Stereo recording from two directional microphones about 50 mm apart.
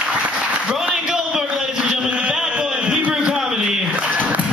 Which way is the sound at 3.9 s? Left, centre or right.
Right.